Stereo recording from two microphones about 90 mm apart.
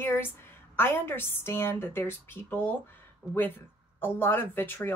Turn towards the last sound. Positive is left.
turn(degrees=25)  # may be behind; listen again after turning